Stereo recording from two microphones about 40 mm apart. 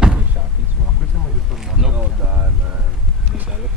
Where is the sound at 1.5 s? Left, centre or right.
Centre.